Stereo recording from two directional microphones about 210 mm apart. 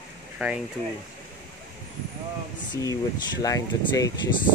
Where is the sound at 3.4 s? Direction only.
15° left (ahead or behind).